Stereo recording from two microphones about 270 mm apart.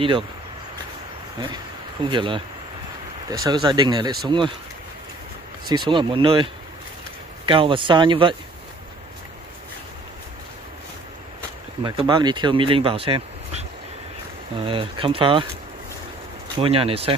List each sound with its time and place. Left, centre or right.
2.0 s speech: centre
5.7 s speech: centre
11.8 s speech: centre
16.5 s speech: right